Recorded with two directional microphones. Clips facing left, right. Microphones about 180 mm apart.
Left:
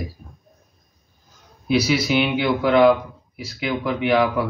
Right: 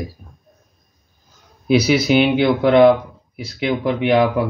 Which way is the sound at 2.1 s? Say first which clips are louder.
Right 5 dB; 30° right (ahead or behind).